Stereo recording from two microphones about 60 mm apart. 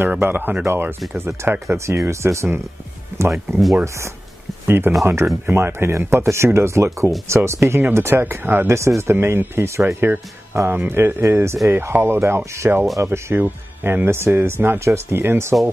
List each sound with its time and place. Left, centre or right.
0.2 s speech: right
1.9 s speech: right
4.6 s speech: right
11.7 s speech: right
13.4 s speech: right
14.0 s speech: right